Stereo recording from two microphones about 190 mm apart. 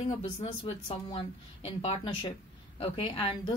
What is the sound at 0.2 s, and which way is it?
A man's voice, 30° left (ahead or behind).